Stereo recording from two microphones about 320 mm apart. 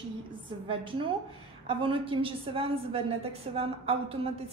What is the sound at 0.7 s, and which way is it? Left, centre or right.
A woman's voice, centre.